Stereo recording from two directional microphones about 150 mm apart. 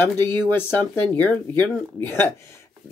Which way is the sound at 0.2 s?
25° right (ahead or behind).